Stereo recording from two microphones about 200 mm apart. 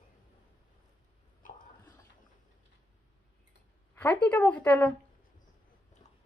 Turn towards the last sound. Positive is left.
turn(degrees=5)  # may be behind; listen again after turning